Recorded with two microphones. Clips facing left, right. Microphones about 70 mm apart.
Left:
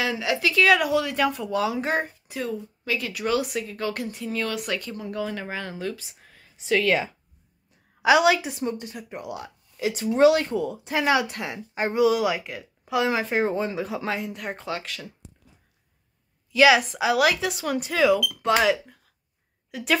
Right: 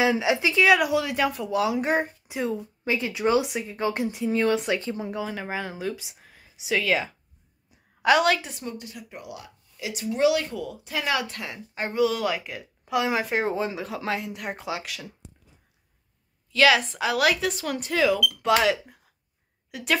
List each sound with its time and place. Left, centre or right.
0.0 s speech: right
0.7 s speech: centre
2.2 s speech: centre
5.2 s speech: centre
6.2 s a sound: centre
8.0 s speech: centre
16.5 s a woman's voice: centre